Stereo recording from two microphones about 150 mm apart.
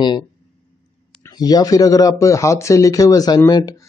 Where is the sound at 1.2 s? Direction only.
25° left (ahead or behind).